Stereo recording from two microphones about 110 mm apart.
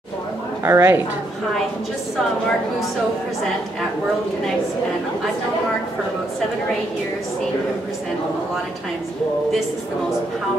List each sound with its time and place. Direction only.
0.7 s a woman's voice: 25° right (ahead or behind)